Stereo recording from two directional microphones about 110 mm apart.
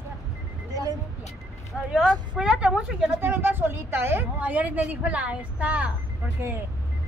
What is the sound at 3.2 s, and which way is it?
A woman's voice, 20° right (ahead or behind).